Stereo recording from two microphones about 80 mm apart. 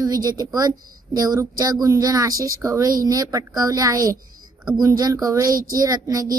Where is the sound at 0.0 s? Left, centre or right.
Right.